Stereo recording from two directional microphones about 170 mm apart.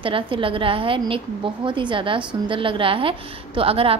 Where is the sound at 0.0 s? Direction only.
30° right (ahead or behind).